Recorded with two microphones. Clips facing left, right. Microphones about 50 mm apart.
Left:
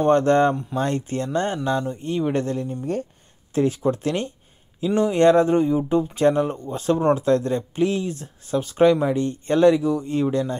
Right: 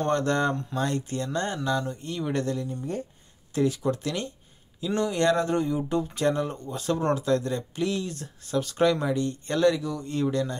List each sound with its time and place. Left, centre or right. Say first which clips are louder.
0.1 s speech: left 9 dB; left
2.5 s speech: left 5 dB; left